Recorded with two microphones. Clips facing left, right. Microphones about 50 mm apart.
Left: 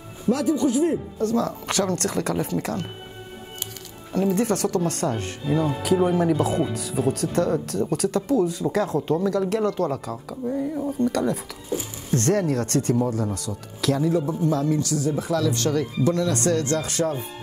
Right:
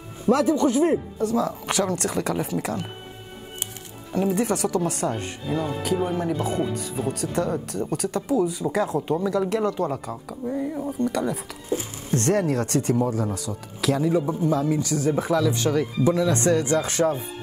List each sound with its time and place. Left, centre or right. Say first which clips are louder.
0.3 s speech: right 2 dB; right
1.1 s speech: even; centre
4.1 s speech: left 1 dB; centre
14.9 s speech: right 2 dB; right
15.3 s speech: left 1 dB; centre